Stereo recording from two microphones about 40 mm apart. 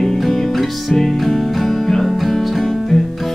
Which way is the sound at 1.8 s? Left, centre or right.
Centre.